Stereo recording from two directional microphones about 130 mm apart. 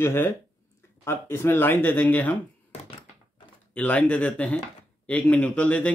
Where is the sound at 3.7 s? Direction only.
10° left (ahead or behind).